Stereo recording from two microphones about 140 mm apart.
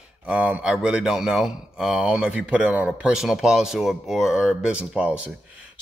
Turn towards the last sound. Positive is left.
turn(degrees=-10)  # may be behind; listen again after turning